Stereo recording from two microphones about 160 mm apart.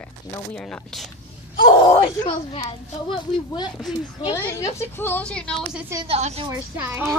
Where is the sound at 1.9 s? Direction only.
25° left (ahead or behind).